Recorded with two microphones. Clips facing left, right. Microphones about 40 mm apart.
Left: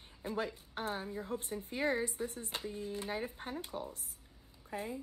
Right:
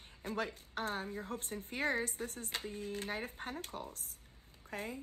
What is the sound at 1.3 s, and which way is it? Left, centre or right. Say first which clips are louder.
Speech: left 7 dB; right.